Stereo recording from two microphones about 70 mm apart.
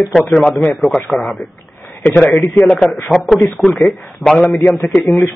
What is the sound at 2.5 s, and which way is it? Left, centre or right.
Speech, centre.